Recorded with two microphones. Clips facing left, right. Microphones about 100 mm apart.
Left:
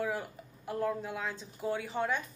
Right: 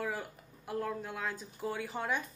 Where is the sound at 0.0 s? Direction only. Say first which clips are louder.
Left 3 dB; centre (ahead or behind).